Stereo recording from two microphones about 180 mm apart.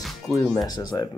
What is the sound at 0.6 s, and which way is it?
Speech, 20° left (ahead or behind).